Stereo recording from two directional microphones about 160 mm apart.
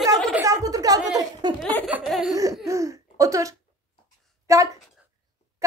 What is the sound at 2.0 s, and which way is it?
Laughter, centre (ahead or behind).